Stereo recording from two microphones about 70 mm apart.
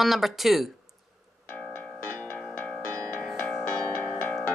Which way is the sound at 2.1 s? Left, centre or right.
Left.